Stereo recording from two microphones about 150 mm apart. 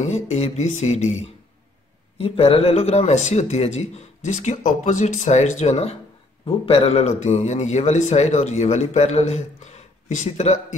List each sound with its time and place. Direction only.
0.0 s a man's voice: 50° left (ahead or behind)